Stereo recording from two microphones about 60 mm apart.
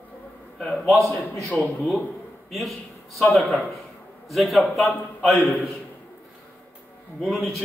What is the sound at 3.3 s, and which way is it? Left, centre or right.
A man's voice, centre.